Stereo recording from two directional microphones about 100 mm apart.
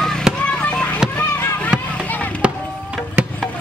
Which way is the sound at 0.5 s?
10° left (ahead or behind).